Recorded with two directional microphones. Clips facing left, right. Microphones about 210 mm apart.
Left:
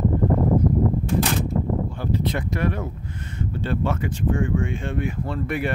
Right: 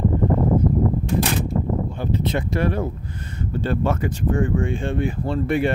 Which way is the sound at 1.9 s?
20° right (ahead or behind).